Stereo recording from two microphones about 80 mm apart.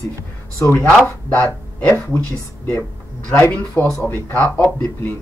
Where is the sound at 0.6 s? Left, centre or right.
Left.